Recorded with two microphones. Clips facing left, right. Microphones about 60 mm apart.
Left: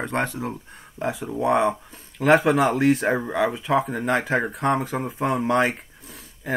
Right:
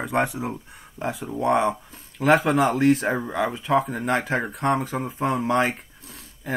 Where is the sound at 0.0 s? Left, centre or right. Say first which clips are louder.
Right 2 dB; centre.